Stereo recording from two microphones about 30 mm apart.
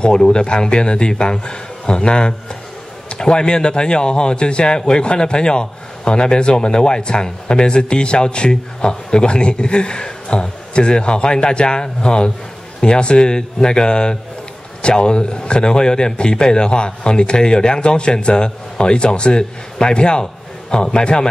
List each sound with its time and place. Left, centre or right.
0.0 s a man's voice: left